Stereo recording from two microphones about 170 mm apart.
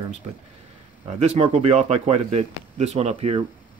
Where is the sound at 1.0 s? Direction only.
40° right (ahead or behind).